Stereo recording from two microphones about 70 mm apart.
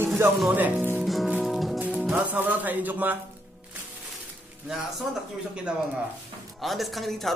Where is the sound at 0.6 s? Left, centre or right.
Right.